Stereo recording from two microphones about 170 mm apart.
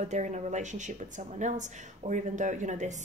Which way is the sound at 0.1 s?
45° right (ahead or behind).